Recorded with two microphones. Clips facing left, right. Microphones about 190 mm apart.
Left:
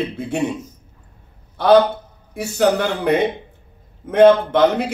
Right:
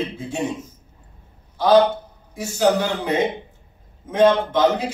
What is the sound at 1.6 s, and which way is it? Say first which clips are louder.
A man's voice: left 2 dB; 60° left (ahead or behind).